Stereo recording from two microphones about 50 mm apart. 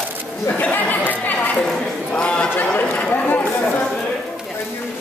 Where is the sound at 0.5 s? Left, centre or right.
Left.